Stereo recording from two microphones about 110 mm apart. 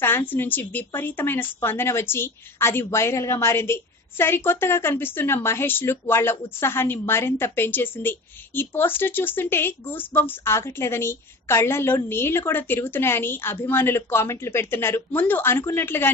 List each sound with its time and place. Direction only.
0.0 s speech: 20° left (ahead or behind)